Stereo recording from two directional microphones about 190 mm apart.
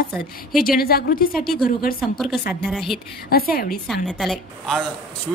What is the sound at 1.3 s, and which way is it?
A woman's voice, centre (ahead or behind).